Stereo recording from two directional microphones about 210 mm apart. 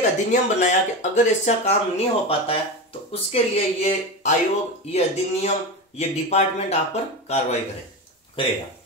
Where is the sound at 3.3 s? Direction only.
30° left (ahead or behind).